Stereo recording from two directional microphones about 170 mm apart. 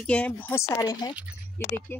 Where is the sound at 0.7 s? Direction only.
20° left (ahead or behind).